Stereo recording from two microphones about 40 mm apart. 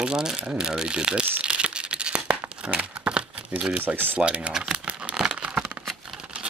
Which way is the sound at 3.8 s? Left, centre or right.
Right.